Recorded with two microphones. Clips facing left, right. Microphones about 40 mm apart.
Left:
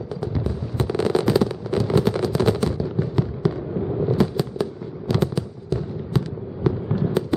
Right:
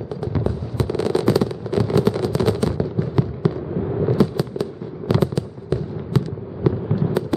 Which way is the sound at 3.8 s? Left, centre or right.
Right.